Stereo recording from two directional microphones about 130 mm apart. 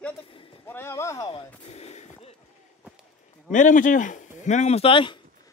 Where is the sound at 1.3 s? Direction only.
55° left (ahead or behind).